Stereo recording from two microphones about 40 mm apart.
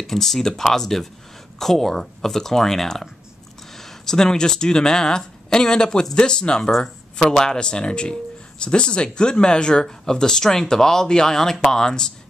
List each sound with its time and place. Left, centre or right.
0.0 s speech: centre